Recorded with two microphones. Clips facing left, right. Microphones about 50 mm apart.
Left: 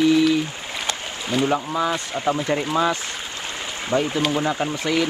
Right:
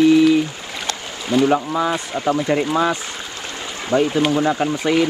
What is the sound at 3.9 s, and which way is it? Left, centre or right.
Speech, centre.